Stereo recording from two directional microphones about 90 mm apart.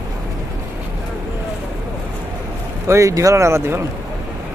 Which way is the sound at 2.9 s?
35° right (ahead or behind).